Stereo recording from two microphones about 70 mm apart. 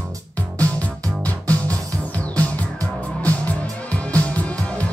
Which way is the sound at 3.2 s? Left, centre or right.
Left.